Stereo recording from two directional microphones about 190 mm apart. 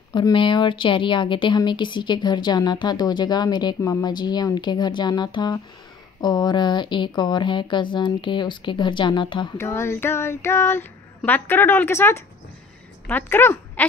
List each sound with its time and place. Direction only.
0.1 s speech: 25° left (ahead or behind)
9.6 s child singing: 15° left (ahead or behind)
13.0 s speech: 10° left (ahead or behind)